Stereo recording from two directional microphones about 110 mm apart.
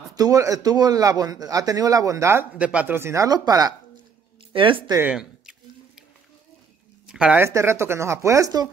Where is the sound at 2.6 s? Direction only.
10° right (ahead or behind); by 3.7 s 35° right (ahead or behind).